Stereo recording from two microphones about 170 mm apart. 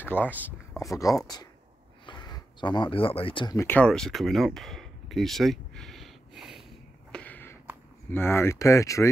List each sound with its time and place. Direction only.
0.0 s speech: 10° left (ahead or behind); by 3.5 s 30° left (ahead or behind)
3.5 s speech: 10° left (ahead or behind)
7.1 s a sound: 10° left (ahead or behind)
8.1 s speech: 15° left (ahead or behind)